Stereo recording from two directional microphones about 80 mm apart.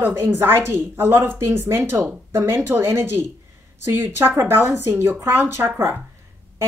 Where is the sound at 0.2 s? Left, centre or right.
Right.